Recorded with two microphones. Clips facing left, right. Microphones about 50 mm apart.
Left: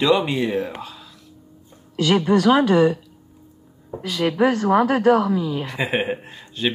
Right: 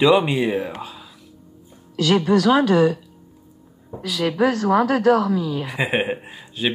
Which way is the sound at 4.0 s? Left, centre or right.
Left.